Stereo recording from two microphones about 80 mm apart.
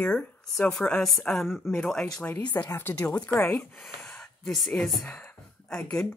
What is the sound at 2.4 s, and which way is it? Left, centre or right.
Speech, left.